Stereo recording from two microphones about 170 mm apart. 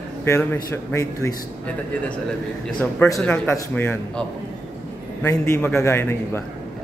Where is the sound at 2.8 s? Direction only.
5° left (ahead or behind).